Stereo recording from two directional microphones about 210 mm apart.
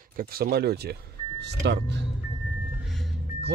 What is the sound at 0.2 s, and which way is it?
Speech, 45° right (ahead or behind).